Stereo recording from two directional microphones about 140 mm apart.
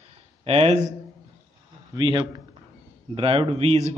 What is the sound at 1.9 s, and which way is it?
A man's voice, 30° right (ahead or behind).